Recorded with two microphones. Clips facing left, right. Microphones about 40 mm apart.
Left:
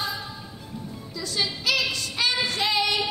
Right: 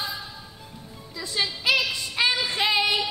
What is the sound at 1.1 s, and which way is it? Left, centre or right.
Music, centre.